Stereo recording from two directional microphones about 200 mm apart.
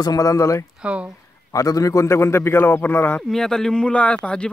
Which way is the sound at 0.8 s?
5° right (ahead or behind).